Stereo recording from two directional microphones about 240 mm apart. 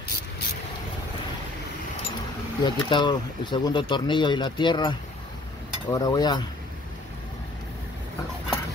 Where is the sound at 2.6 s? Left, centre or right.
Centre.